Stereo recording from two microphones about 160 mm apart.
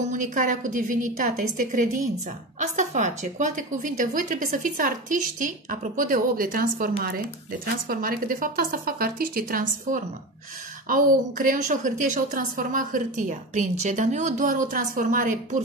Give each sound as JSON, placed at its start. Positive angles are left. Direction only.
{"t": 0.0, "sound": "a woman's voice", "side_deg": -50}